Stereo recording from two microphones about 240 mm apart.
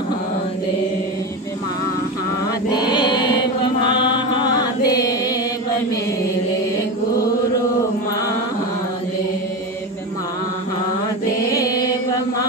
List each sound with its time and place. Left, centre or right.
2.8 s chant: centre
4.8 s chant: centre